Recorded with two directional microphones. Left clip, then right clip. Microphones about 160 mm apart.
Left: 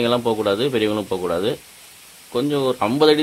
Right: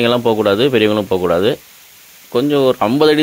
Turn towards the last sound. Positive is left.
turn(degrees=-35)  # may be behind; listen again after turning